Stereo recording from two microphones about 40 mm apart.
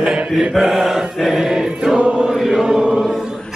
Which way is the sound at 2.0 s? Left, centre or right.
Right.